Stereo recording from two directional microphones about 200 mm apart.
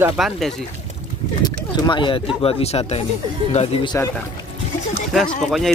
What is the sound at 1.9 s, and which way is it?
Speech, 25° left (ahead or behind).